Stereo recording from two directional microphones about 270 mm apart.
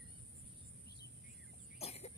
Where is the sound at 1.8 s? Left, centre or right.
Left.